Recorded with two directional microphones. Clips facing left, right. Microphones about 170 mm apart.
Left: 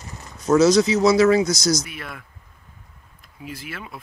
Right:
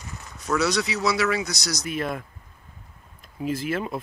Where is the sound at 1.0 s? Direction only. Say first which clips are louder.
Left 8 dB; 40° left (ahead or behind).